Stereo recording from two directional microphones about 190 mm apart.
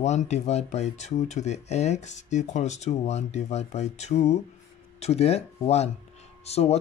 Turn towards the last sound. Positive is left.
turn(degrees=35)  # may be behind; listen again after turning